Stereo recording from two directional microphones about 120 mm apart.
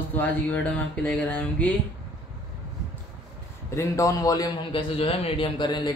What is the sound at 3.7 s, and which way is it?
Speech, 25° left (ahead or behind).